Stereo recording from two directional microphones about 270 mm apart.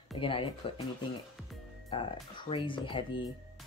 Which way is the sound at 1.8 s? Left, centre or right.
Centre.